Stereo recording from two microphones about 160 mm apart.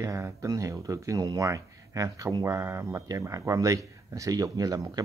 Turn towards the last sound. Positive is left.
turn(degrees=-25)  # may be behind; listen again after turning